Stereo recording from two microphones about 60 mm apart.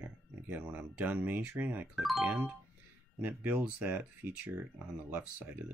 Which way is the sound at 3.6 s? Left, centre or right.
Right.